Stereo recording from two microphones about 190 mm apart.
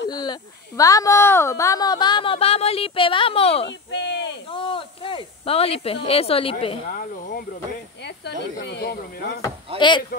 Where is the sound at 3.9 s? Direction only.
65° left (ahead or behind).